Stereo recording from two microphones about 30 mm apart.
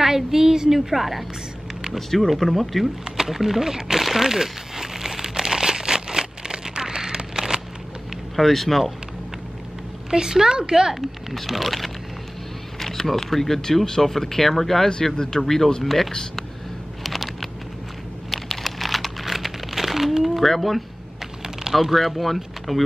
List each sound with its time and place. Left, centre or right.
0.0 s a sound: centre
0.7 s a woman's voice: centre
2.0 s speech: centre
3.2 s speech: centre
4.0 s crumpling: centre
8.4 s speech: centre
10.1 s speech: right
11.4 s speech: centre
12.7 s speech: centre
17.0 s a sound: centre
18.3 s computer keyboard: centre
20.5 s speech: centre
21.8 s speech: centre